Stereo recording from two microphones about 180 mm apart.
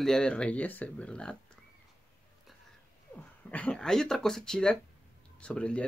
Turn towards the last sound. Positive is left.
turn(degrees=5)  # may be behind; listen again after turning